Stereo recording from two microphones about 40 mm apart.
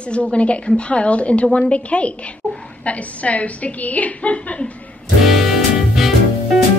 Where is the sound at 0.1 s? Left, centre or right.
Left.